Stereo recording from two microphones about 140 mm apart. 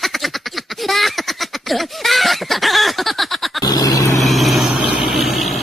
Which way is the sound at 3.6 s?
30° left (ahead or behind).